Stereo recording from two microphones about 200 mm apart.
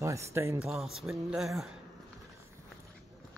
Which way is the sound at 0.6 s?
Centre (ahead or behind).